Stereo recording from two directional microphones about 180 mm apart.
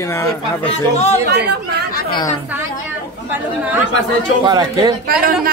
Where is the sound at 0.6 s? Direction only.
35° left (ahead or behind).